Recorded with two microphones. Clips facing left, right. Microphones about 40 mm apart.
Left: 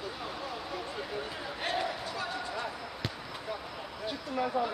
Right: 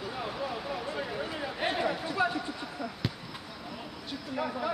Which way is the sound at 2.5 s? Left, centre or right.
Centre.